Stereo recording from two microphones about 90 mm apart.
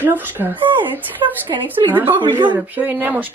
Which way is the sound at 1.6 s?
20° right (ahead or behind).